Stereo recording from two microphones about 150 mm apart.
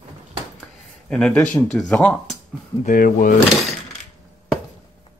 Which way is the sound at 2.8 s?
65° left (ahead or behind).